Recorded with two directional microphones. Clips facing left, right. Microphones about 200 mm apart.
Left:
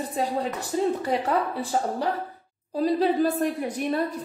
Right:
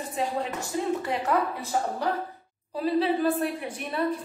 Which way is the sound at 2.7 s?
40° left (ahead or behind).